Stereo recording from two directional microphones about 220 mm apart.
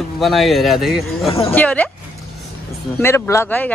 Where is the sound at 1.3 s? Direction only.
25° left (ahead or behind).